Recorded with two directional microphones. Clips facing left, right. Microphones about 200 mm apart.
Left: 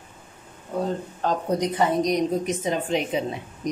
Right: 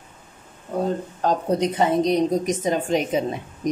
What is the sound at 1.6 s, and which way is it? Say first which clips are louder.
A woman's voice: right 2 dB; 25° right (ahead or behind).